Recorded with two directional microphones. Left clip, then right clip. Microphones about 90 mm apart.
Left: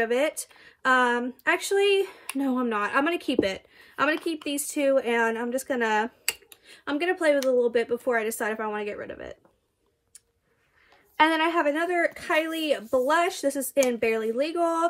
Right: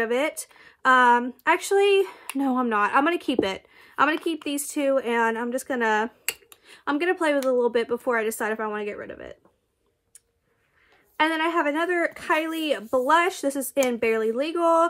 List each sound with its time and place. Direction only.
0.0 s speech: 30° right (ahead or behind)
6.5 s a sound: 40° right (ahead or behind)
7.5 s speech: 40° right (ahead or behind); by 9.2 s 15° right (ahead or behind)
11.1 s speech: centre (ahead or behind)
11.5 s speech: 25° right (ahead or behind)